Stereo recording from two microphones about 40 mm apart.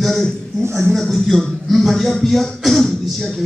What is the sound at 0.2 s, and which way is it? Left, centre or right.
Speech, left.